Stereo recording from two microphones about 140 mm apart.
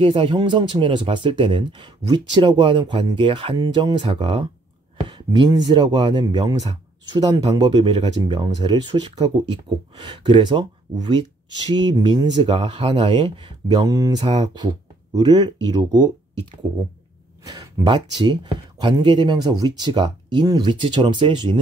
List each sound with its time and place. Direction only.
0.0 s speech: 40° right (ahead or behind)